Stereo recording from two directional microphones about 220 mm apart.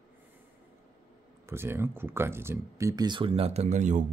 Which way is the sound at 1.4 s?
10° right (ahead or behind).